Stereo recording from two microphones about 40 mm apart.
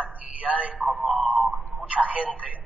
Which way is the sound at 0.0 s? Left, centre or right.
Right.